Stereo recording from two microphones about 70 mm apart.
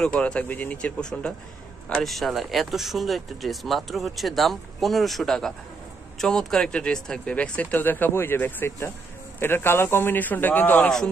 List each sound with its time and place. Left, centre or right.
0.0 s speech: centre
1.9 s speech: centre
7.8 s a man's voice: left